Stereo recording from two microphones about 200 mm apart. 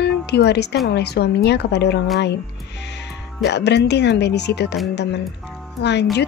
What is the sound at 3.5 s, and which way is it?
Speech, 60° left (ahead or behind).